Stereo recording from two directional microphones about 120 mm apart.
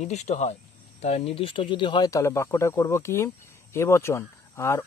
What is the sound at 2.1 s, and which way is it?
Speech, 25° left (ahead or behind).